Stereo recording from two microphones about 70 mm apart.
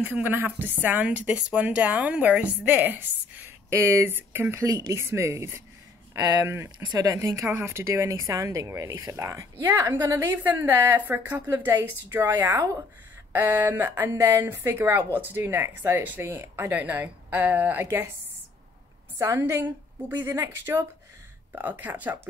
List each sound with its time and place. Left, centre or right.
0.0 s a woman's voice: right
4.6 s a woman's voice: right
7.0 s a woman's voice: right
10.0 s a woman's voice: right
19.1 s a woman's voice: right
21.5 s speech: right